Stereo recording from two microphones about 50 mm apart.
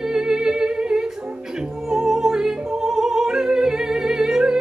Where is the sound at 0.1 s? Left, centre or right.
Centre.